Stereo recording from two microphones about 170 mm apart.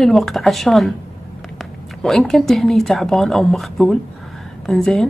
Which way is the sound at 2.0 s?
Centre (ahead or behind).